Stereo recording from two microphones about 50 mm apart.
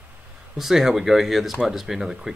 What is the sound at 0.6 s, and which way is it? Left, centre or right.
Speech, centre.